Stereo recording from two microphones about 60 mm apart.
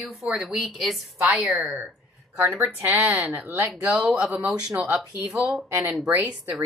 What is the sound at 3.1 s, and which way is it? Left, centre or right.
Speech, centre.